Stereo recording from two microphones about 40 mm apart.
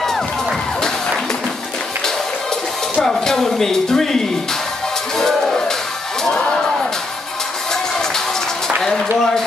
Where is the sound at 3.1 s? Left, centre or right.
Centre.